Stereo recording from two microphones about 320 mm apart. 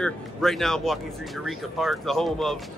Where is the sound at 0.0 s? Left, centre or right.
Centre.